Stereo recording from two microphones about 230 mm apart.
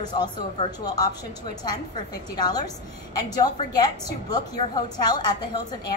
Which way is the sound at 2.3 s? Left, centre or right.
Centre.